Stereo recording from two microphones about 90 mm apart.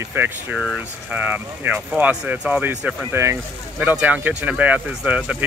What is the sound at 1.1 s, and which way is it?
Speech, 20° right (ahead or behind).